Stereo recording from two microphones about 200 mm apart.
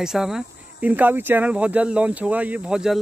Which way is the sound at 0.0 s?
5° right (ahead or behind).